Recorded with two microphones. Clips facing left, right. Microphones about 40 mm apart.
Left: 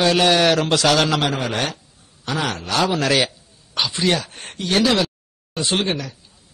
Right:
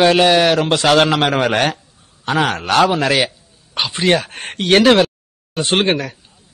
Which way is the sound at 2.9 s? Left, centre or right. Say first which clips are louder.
Right 3 dB; centre.